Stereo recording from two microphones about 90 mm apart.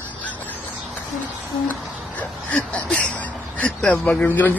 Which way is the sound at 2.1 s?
10° left (ahead or behind).